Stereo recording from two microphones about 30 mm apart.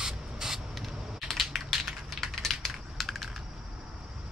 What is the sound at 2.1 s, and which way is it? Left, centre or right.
Typing, centre.